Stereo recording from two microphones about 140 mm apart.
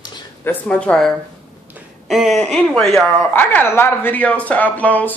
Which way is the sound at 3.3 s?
15° left (ahead or behind).